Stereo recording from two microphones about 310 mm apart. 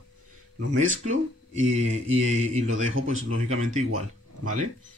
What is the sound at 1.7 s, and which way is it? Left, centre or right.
Speech, right.